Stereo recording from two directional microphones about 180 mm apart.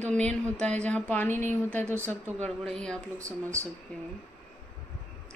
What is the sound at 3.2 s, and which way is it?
Speech, 15° right (ahead or behind).